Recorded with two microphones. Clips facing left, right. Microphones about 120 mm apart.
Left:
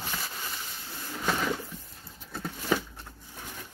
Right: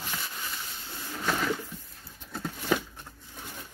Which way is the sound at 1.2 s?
15° left (ahead or behind).